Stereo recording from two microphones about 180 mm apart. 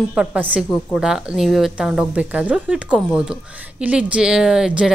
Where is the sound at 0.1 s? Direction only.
5° right (ahead or behind).